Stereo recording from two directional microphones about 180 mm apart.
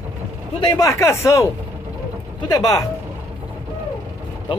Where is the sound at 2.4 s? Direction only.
20° left (ahead or behind).